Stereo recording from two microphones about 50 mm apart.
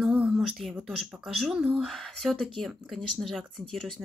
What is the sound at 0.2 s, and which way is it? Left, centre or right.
Speech, centre.